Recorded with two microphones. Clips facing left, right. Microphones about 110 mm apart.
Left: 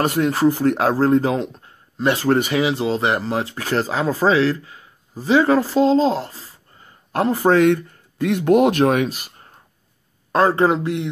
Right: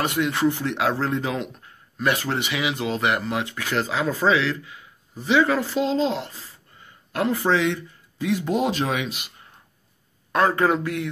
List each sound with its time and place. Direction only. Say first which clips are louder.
0.0 s speech: left 5 dB; 40° left (ahead or behind)
2.2 s speech: left 8 dB; 45° left (ahead or behind); by 11.1 s 25° left (ahead or behind)